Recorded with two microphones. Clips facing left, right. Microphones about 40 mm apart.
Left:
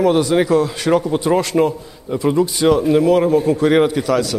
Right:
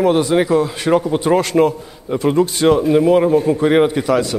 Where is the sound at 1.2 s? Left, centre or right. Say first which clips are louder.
Right 2 dB; right.